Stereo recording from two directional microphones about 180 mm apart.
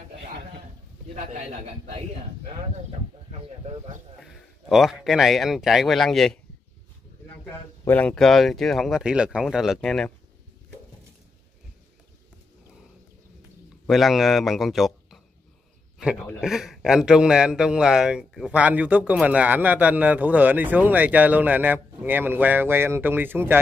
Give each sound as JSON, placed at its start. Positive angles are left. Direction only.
{"t": 2.4, "sound": "speech", "side_deg": -35}
{"t": 4.2, "sound": "a man's voice", "side_deg": 0}
{"t": 7.8, "sound": "speech", "side_deg": 10}
{"t": 13.8, "sound": "a man's voice", "side_deg": 0}